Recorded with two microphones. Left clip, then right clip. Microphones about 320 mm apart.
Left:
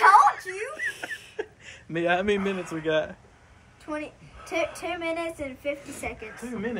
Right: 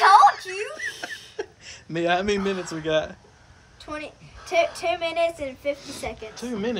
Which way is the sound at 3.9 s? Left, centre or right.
Right.